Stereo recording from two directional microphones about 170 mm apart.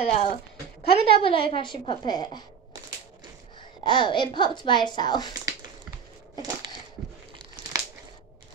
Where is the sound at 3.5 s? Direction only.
25° left (ahead or behind).